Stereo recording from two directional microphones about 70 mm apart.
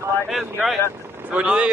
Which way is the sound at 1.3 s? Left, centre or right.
Centre.